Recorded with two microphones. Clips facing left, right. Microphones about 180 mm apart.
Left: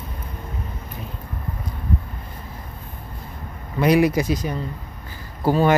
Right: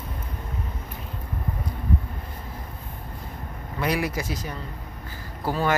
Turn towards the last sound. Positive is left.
turn(degrees=20)  # may be behind; listen again after turning